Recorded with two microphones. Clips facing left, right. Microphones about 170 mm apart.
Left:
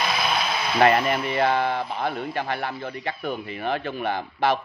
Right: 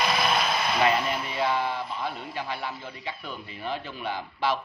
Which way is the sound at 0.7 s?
60° left (ahead or behind).